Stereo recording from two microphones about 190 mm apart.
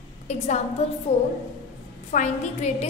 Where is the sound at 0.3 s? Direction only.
35° left (ahead or behind).